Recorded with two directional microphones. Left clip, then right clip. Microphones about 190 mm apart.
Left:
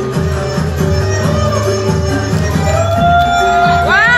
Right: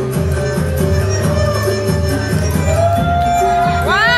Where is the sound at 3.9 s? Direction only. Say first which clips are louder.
Left 1 dB; 15° right (ahead or behind).